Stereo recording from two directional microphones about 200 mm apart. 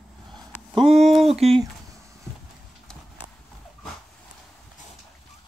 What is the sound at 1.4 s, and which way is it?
Speech, 30° right (ahead or behind).